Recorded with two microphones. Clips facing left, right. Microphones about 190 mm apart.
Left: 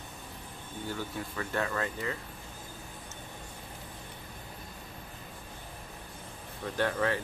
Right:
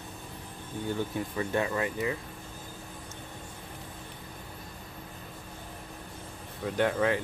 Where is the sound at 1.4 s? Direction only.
15° right (ahead or behind).